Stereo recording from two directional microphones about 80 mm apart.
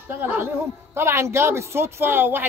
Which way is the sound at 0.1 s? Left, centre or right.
Right.